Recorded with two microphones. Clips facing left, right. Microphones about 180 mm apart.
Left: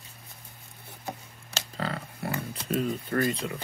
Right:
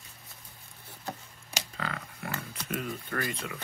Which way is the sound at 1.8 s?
35° left (ahead or behind).